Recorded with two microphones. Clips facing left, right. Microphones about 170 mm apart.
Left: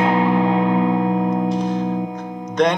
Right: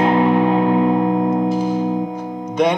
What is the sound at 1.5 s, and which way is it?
Music, 5° right (ahead or behind).